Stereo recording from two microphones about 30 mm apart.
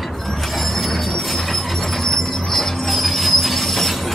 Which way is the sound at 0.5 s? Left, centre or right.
Centre.